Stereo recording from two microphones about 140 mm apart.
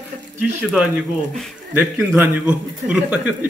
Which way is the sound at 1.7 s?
10° right (ahead or behind).